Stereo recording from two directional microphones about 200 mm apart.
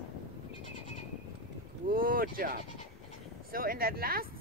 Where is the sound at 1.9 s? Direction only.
45° right (ahead or behind).